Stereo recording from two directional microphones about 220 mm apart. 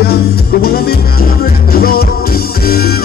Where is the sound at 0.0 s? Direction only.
45° left (ahead or behind).